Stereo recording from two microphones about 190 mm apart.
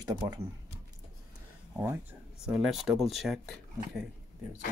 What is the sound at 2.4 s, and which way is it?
Speech, centre (ahead or behind).